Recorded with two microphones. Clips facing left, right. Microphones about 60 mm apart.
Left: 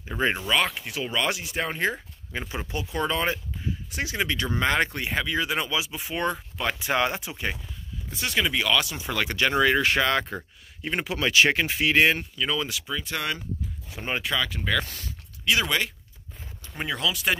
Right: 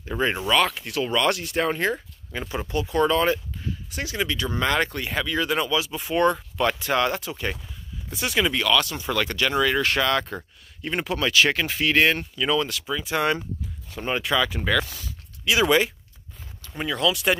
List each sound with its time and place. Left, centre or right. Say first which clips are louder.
0.1 s speech: right 1 dB; centre
0.5 s speech: right 3 dB; centre
1.9 s speech: right 3 dB; centre
5.9 s speech: right 7 dB; centre
7.4 s speech: right 1 dB; centre
8.6 s speech: right 3 dB; centre
9.4 s speech: left 2 dB; left
10.3 s speech: right 1 dB; centre
12.4 s speech: right 4 dB; centre
13.8 s speech: right 3 dB; centre
14.9 s a sound: even; left
15.4 s speech: right 5 dB; centre
16.6 s a sound: right 2 dB; centre
16.9 s speech: right 4 dB; centre